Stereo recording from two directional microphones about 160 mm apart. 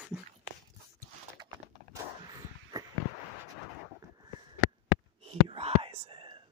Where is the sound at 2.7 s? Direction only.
20° right (ahead or behind).